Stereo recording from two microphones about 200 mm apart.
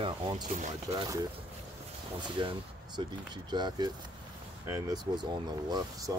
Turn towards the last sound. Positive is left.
turn(degrees=-20)  # may be behind; listen again after turning